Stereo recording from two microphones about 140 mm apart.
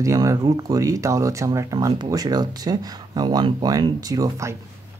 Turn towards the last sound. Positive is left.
turn(degrees=-25)  # may be behind; listen again after turning